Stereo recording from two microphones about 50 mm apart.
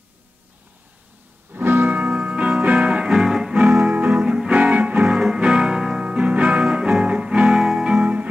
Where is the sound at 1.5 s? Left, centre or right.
Right.